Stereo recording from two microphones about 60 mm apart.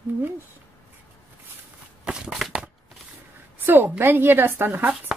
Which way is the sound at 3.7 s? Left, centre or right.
Right.